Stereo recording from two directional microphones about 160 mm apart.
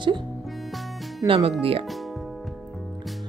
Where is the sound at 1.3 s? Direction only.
40° right (ahead or behind).